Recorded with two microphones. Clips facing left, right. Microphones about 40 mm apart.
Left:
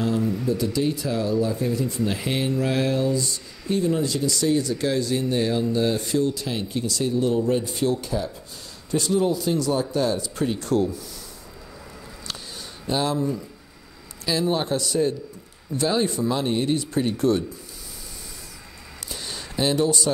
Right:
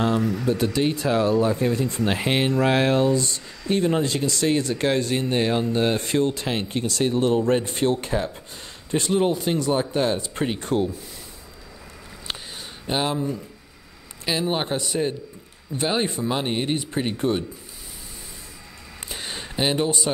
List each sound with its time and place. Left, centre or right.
0.0 s speech: right
0.3 s speech: right
0.7 s speech: right
12.8 s speech: right
14.2 s speech: right
19.0 s a sound: right